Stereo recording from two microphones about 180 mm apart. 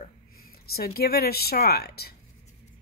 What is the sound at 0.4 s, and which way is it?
Speech, 60° left (ahead or behind).